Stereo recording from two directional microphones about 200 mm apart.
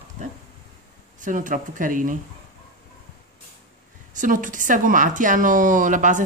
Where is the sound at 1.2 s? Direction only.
40° right (ahead or behind).